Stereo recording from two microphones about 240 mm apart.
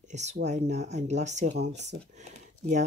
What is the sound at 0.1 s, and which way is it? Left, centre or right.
Speech, right.